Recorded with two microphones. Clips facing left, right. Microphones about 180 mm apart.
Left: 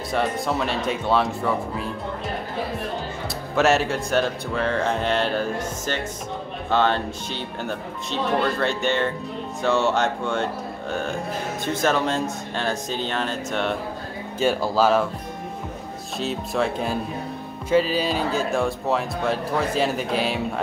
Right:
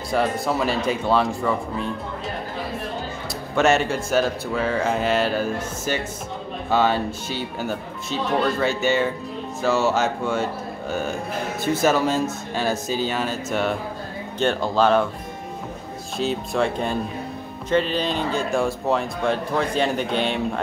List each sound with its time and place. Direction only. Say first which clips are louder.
0.1 s speech: right 2 dB; centre (ahead or behind)
3.5 s speech: right 1 dB; centre (ahead or behind)
14.4 s speech: even; 5° left (ahead or behind)
16.2 s speech: right 2 dB; centre (ahead or behind)